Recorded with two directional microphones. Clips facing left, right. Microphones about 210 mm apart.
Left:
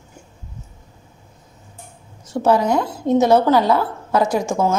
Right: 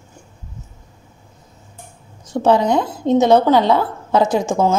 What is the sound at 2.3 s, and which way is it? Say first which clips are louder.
A woman's voice: right 2 dB; 15° right (ahead or behind).